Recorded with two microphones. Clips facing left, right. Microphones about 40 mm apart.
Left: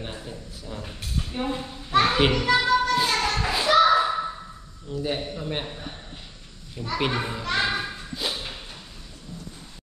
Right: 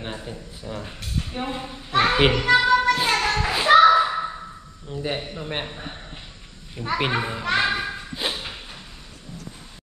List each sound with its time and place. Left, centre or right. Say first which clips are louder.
0.0 s speech: right 3 dB; centre
3.8 s a sound: right 4 dB; centre
4.8 s a man's voice: even; centre